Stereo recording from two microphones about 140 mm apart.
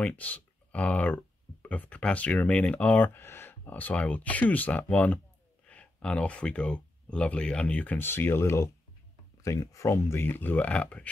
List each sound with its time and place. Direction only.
0.0 s speech: 10° left (ahead or behind)